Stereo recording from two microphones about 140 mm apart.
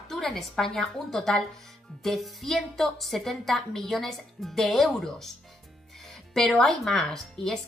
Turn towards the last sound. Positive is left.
turn(degrees=5)  # may be behind; listen again after turning